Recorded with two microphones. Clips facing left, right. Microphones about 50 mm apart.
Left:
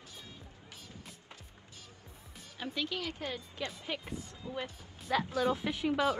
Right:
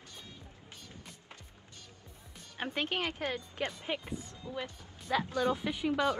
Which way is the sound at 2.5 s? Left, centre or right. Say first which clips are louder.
Right 3 dB; right.